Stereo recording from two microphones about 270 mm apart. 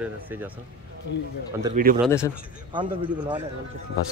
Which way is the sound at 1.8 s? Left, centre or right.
Right.